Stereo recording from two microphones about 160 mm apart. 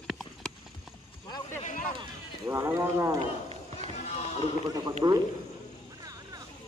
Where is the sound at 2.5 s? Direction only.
20° right (ahead or behind).